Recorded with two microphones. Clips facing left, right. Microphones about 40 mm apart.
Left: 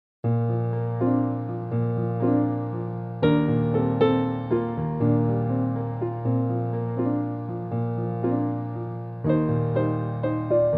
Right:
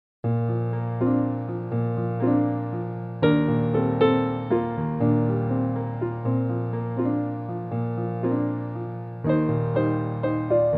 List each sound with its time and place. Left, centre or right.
1.0 s music: centre